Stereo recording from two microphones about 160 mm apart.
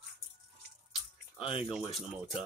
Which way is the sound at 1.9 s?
5° right (ahead or behind).